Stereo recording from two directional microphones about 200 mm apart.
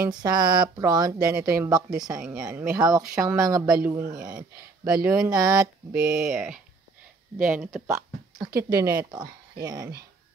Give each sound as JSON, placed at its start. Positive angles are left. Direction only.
{"t": 0.0, "sound": "speech", "side_deg": -20}
{"t": 2.2, "sound": "speech", "side_deg": -5}
{"t": 3.3, "sound": "speech", "side_deg": -15}
{"t": 4.8, "sound": "speech", "side_deg": -5}
{"t": 5.3, "sound": "speech", "side_deg": -20}
{"t": 5.9, "sound": "speech", "side_deg": -5}